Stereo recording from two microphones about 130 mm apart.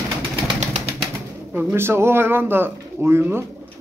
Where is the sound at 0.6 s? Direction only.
65° right (ahead or behind).